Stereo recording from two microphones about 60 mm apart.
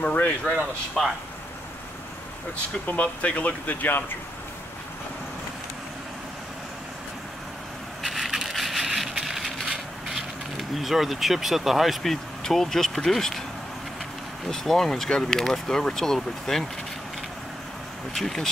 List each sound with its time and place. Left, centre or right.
0.0 s speech: left
1.0 s speech: centre
2.9 s speech: left
8.0 s a sound: centre
10.7 s speech: centre
14.5 s speech: centre
18.1 s speech: centre